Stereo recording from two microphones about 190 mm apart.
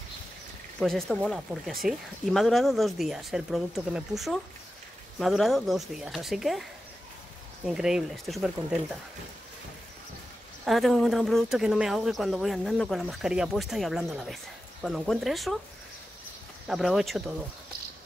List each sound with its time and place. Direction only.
0.7 s speech: centre (ahead or behind)
7.6 s speech: 5° right (ahead or behind)
10.6 s speech: centre (ahead or behind)
16.6 s speech: centre (ahead or behind)